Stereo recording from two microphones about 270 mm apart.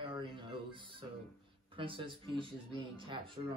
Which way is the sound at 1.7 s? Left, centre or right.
Centre.